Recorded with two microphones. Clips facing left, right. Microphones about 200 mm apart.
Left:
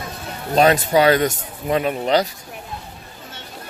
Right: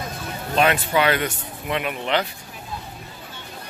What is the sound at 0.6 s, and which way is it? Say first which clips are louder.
Speech: left 5 dB; 40° left (ahead or behind).